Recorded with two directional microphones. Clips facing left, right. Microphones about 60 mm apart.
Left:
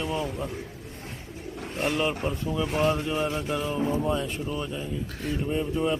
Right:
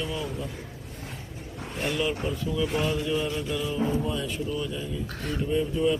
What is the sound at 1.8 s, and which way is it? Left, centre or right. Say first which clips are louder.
Speech: left 1 dB; left.